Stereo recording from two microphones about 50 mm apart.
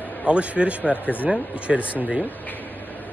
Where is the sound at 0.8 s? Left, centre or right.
Left.